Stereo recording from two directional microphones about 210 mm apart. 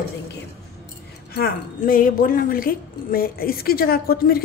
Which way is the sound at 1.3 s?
45° left (ahead or behind).